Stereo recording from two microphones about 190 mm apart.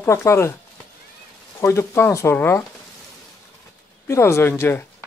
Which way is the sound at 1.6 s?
15° left (ahead or behind).